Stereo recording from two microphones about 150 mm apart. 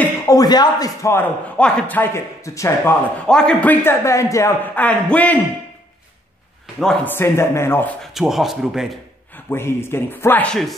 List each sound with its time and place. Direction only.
0.3 s speech: 25° left (ahead or behind)
1.6 s a man's voice: 10° left (ahead or behind)
3.3 s a man's voice: 5° left (ahead or behind)
6.8 s speech: 5° left (ahead or behind)
7.2 s a man's voice: 15° left (ahead or behind)
8.0 s speech: centre (ahead or behind)
9.5 s a man's voice: 15° left (ahead or behind)